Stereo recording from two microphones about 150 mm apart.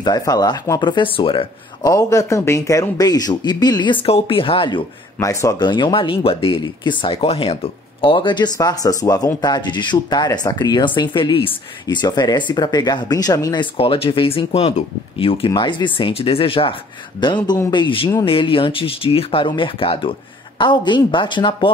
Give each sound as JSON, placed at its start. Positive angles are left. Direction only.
{"t": 0.0, "sound": "a man's voice", "side_deg": 25}
{"t": 1.9, "sound": "a man's voice", "side_deg": 20}
{"t": 5.2, "sound": "speech", "side_deg": 20}